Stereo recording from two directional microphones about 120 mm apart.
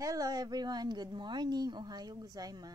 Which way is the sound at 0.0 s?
30° right (ahead or behind).